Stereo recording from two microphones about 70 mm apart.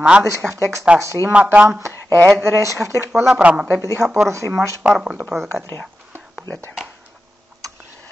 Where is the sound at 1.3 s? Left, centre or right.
Centre.